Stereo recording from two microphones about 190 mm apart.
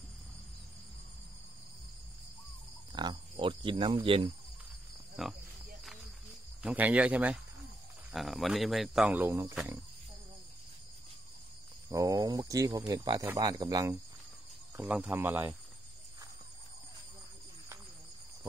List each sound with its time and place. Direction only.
2.9 s speech: 25° right (ahead or behind)
5.2 s speech: 5° right (ahead or behind)
6.6 s speech: 5° right (ahead or behind)
11.9 s speech: 20° right (ahead or behind)